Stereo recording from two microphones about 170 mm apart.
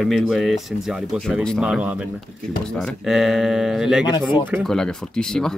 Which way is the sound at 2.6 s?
5° left (ahead or behind).